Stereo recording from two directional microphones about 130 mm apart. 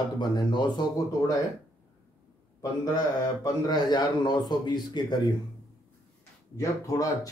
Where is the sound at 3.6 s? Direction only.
35° left (ahead or behind).